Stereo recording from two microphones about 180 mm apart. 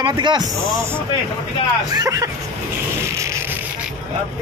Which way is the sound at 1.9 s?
20° right (ahead or behind).